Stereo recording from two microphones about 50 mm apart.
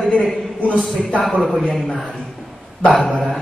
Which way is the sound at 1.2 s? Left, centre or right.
Centre.